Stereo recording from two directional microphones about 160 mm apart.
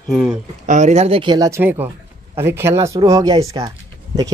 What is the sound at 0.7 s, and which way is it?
Speech, 50° right (ahead or behind).